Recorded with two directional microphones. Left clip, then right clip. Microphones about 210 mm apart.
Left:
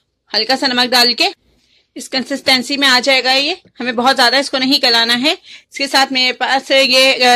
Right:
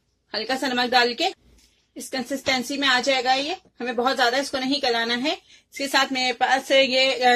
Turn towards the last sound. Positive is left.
turn(degrees=40)  # may be behind; listen again after turning